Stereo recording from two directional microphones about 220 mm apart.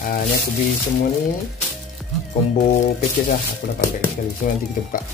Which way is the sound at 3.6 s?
45° left (ahead or behind).